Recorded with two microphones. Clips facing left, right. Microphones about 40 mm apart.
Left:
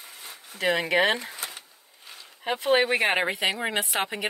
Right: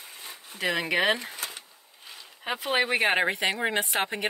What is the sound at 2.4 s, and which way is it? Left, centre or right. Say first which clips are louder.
Speech: left 3 dB; centre.